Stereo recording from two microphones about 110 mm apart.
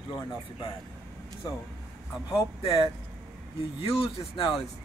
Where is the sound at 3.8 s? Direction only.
55° left (ahead or behind).